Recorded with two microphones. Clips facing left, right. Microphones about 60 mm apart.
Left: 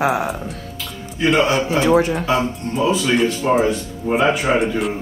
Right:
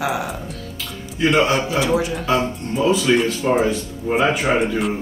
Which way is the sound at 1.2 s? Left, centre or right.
Centre.